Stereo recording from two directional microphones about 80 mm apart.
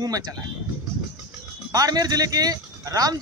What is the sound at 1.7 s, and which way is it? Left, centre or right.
Speech, right.